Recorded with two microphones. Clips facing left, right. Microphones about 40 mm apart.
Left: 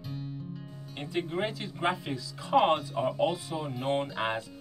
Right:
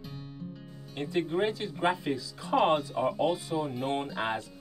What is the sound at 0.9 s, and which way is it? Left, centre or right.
Speech, centre.